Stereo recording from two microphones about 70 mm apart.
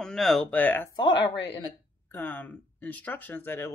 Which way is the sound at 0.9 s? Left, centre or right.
Left.